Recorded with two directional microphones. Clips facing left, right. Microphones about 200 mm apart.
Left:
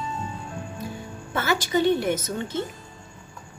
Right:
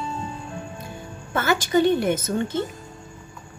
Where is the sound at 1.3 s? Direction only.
50° right (ahead or behind).